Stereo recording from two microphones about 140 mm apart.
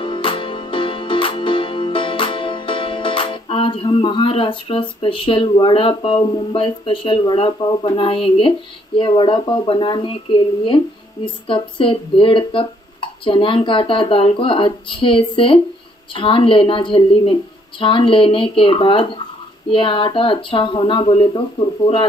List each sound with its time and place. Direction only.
0.0 s music: 35° left (ahead or behind)
11.4 s speech: 40° left (ahead or behind)